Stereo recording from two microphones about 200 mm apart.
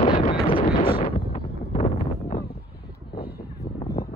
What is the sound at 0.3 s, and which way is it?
Wind noise, 25° left (ahead or behind).